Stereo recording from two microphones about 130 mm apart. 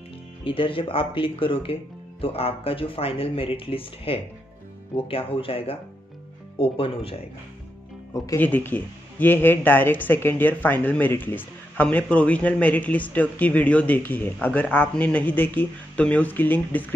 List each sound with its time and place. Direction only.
0.4 s speech: 40° left (ahead or behind)
8.4 s speech: 15° left (ahead or behind)